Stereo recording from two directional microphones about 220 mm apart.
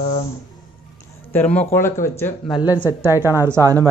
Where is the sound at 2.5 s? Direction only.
5° right (ahead or behind).